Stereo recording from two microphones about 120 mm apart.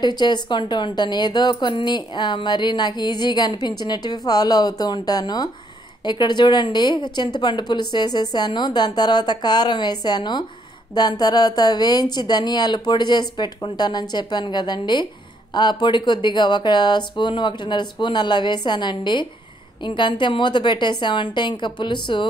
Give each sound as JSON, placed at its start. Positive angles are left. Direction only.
{"t": 0.0, "sound": "speech", "side_deg": 40}